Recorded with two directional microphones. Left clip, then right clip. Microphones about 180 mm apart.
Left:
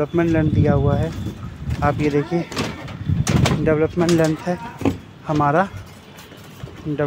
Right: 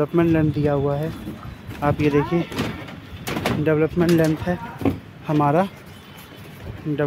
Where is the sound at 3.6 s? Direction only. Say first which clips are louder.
Even; 10° right (ahead or behind).